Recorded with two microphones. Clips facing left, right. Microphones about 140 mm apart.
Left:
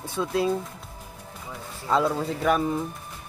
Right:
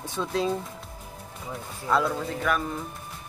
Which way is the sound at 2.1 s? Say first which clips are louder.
Left 4 dB; 30° left (ahead or behind).